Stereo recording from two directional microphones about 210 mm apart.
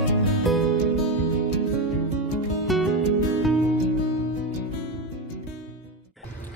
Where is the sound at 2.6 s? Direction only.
Centre (ahead or behind).